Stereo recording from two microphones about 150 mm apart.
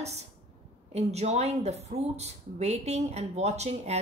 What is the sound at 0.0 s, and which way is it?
Speech, 45° right (ahead or behind).